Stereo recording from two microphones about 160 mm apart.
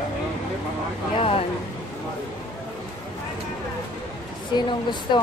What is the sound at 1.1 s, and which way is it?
Vehicle, 35° left (ahead or behind).